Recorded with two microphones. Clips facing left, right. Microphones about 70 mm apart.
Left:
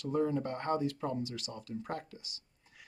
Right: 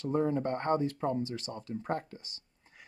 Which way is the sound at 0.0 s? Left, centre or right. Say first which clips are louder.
Right 2 dB; right.